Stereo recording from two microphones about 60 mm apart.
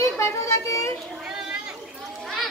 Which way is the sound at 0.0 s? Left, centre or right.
Left.